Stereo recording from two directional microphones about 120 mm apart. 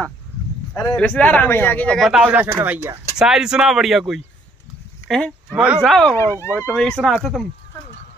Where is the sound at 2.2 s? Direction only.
15° right (ahead or behind).